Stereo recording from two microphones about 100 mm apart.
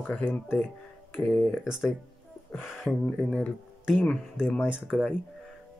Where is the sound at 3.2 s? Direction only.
10° left (ahead or behind).